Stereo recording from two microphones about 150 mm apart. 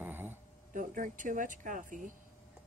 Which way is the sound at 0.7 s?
60° right (ahead or behind).